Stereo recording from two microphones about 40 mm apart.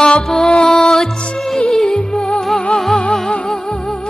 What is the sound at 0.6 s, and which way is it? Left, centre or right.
Music, centre.